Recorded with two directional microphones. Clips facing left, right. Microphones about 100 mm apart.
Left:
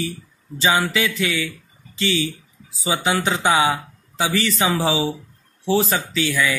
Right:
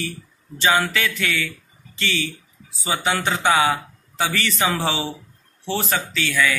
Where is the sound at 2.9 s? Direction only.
15° left (ahead or behind).